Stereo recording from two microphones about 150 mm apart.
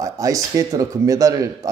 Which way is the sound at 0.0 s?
20° right (ahead or behind).